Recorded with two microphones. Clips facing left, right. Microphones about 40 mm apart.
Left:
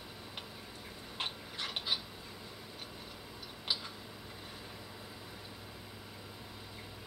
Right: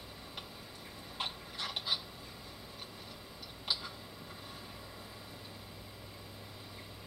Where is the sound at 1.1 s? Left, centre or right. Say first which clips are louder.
Even; left.